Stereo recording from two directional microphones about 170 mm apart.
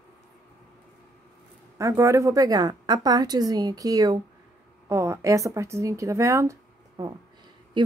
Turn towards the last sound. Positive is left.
turn(degrees=-25)  # may be behind; listen again after turning